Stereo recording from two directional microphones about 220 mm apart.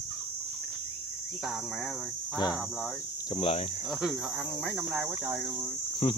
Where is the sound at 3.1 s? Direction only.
20° left (ahead or behind).